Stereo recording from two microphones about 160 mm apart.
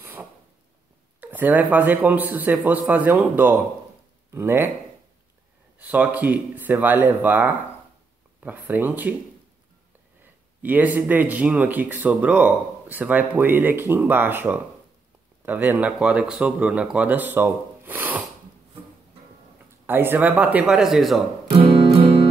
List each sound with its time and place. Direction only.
0.0 s a sound: 10° right (ahead or behind)
1.2 s speech: 10° right (ahead or behind)
5.8 s speech: 10° right (ahead or behind)
10.6 s speech: 10° right (ahead or behind)
19.9 s speech: 15° right (ahead or behind)
21.5 s music: 40° right (ahead or behind)